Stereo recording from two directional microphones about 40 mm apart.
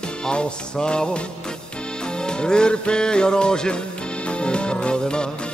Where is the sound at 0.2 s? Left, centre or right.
Left.